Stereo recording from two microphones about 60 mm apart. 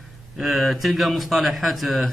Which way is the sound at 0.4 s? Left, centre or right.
Centre.